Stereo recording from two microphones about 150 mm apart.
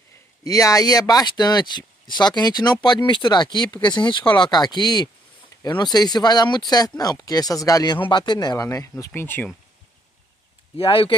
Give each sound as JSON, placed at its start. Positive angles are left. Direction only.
{"t": 0.4, "sound": "speech", "side_deg": 25}
{"t": 10.8, "sound": "speech", "side_deg": 35}